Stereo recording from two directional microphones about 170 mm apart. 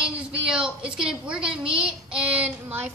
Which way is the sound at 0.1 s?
5° right (ahead or behind).